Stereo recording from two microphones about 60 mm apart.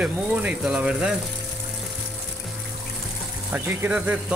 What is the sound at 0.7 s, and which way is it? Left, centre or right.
Speech, centre.